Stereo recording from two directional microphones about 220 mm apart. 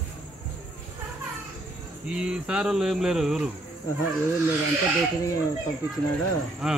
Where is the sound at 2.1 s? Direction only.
5° right (ahead or behind).